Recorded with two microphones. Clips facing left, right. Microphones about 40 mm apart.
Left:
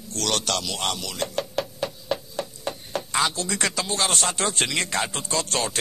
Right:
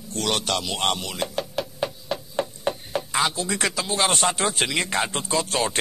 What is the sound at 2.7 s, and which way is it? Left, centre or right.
Chopping, centre.